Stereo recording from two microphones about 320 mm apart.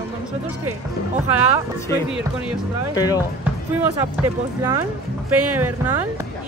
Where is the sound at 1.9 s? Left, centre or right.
Centre.